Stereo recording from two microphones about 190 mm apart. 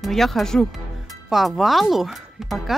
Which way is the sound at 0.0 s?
Centre (ahead or behind).